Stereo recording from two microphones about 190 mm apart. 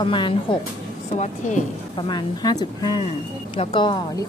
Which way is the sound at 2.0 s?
20° left (ahead or behind).